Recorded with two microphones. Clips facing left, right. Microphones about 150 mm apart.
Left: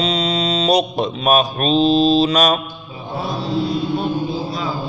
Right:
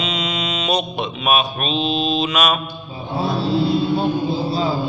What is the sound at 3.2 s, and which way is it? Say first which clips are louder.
Mantra: right 2 dB; 30° right (ahead or behind).